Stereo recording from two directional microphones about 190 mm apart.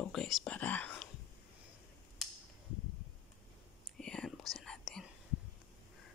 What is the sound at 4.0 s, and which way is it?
Whispering, 5° left (ahead or behind).